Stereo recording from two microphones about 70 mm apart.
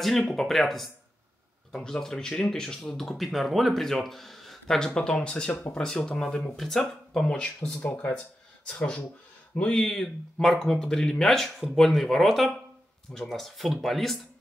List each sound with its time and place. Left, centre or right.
0.0 s speech: centre
7.8 s speech: left
9.8 s speech: centre